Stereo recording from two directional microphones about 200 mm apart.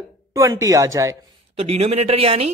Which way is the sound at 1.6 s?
30° right (ahead or behind).